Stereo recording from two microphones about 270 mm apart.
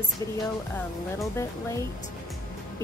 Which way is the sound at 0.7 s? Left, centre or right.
Centre.